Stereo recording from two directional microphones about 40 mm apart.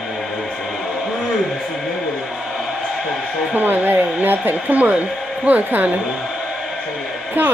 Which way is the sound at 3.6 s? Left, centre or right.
Right.